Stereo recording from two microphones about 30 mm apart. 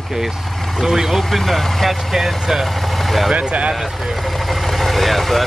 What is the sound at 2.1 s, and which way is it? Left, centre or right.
Speech, centre.